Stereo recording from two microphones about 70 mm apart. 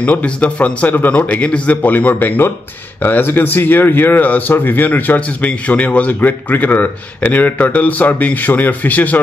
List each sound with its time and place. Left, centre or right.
0.0 s speech: centre